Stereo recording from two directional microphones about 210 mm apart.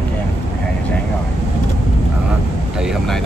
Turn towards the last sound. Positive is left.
turn(degrees=0)  # may be behind; listen again after turning